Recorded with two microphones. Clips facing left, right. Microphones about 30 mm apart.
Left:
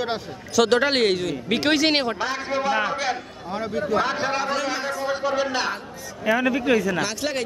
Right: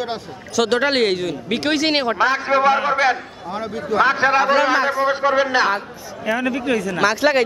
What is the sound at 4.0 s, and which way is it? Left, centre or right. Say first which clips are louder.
A man's voice: right 11 dB; centre.